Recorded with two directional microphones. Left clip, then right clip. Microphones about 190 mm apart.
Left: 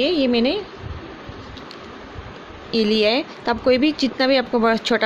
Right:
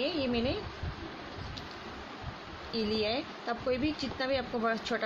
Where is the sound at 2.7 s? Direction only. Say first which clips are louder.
Left 14 dB; 50° left (ahead or behind).